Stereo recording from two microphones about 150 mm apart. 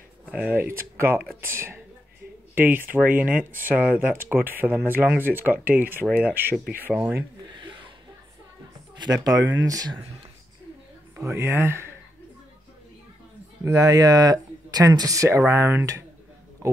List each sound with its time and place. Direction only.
0.3 s speech: 10° right (ahead or behind)
7.5 s a sound: 30° right (ahead or behind)
8.9 s speech: 25° right (ahead or behind)
11.1 s speech: 15° right (ahead or behind)
13.7 s speech: 25° right (ahead or behind)